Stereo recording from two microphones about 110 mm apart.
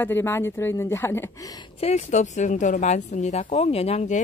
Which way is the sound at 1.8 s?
80° left.